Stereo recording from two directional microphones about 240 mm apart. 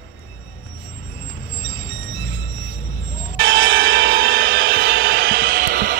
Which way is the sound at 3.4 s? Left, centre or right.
Right.